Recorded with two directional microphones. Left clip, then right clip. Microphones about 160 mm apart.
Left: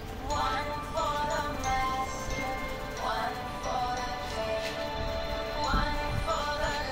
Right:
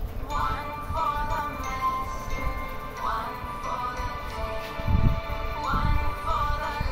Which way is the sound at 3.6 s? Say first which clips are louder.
Even; 30° right (ahead or behind).